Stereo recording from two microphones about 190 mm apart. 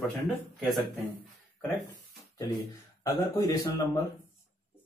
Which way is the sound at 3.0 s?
20° left (ahead or behind).